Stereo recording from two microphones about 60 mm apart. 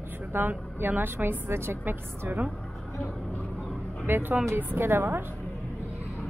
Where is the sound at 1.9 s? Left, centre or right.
Right.